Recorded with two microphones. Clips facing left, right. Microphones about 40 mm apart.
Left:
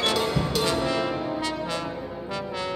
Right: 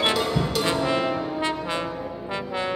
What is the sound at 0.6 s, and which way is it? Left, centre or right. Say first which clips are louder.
Brass instrument: right 2 dB; right.